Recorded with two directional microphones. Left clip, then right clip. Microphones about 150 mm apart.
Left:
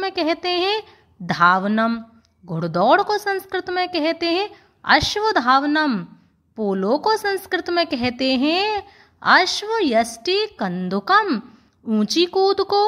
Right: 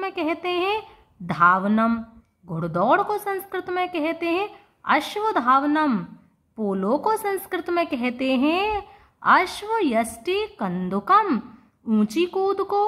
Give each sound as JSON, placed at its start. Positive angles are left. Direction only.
{"t": 0.0, "sound": "a woman's voice", "side_deg": 30}
{"t": 1.9, "sound": "a sound", "side_deg": 20}
{"t": 2.5, "sound": "a woman's voice", "side_deg": 30}